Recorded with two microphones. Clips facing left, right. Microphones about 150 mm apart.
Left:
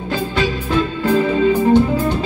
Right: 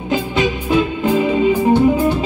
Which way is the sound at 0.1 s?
15° right (ahead or behind).